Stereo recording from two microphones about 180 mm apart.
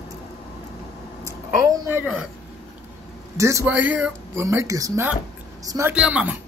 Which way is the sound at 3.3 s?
15° right (ahead or behind).